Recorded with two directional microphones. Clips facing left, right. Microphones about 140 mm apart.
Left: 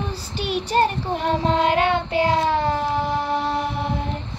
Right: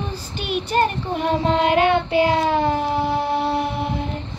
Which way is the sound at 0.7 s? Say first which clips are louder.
Even; 30° left (ahead or behind).